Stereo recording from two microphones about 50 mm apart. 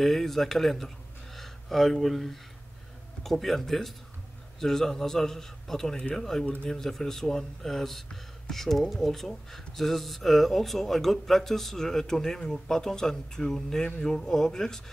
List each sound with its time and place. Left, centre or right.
0.0 s speech: centre
6.4 s speech: left
6.7 s speech: centre